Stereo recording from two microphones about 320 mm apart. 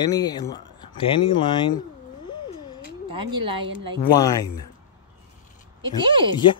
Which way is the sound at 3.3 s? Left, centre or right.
Right.